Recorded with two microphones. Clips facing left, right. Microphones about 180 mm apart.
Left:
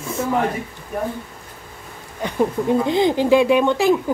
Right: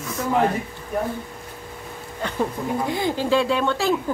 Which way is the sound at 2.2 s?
15° left (ahead or behind).